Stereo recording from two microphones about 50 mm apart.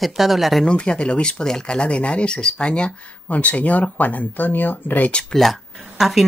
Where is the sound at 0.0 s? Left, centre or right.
Centre.